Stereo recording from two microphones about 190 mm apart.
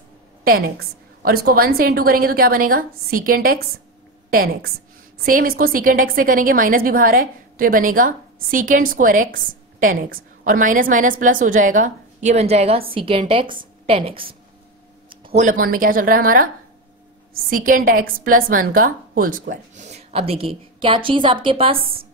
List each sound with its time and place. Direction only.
0.4 s a woman's voice: 50° right (ahead or behind); by 14.3 s 30° right (ahead or behind)
15.2 s a woman's voice: 40° right (ahead or behind)